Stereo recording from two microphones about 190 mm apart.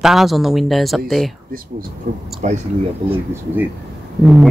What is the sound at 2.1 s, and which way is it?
Speech, 55° right (ahead or behind).